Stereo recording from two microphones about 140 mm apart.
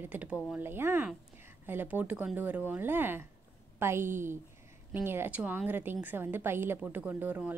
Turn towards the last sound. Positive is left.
turn(degrees=-10)  # may be behind; listen again after turning